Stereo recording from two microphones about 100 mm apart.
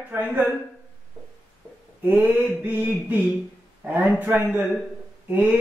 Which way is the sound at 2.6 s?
20° right (ahead or behind).